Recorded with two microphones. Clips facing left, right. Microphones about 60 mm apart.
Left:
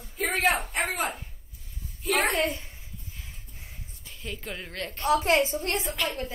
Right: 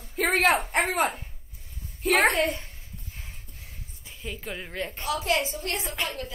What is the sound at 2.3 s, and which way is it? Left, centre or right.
Speech, centre.